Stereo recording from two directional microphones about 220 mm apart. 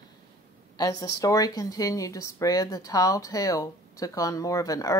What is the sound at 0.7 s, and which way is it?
A woman's voice, 15° left (ahead or behind).